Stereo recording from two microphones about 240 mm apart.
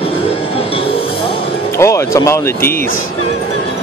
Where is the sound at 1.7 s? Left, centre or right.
Centre.